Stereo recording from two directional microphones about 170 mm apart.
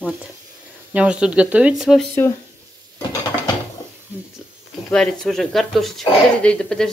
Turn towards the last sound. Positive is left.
turn(degrees=5)  # may be behind; listen again after turning